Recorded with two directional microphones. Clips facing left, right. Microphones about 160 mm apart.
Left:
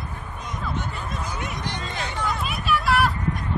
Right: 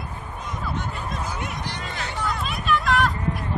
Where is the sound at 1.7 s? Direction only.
20° left (ahead or behind).